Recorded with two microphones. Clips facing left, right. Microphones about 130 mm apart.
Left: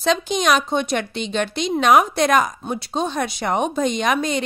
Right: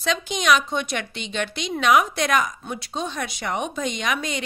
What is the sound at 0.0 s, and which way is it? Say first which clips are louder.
A woman's voice: left 5 dB; 35° left (ahead or behind).